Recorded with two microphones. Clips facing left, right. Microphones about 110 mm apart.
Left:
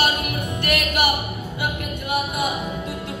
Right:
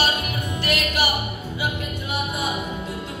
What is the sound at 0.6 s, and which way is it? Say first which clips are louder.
Music: left 2 dB; 60° left (ahead or behind).